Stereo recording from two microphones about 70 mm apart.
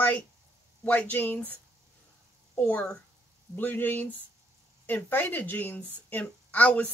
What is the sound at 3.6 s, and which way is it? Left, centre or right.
Speech, left.